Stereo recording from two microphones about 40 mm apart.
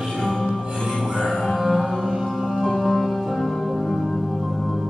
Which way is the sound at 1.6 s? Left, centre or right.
Centre.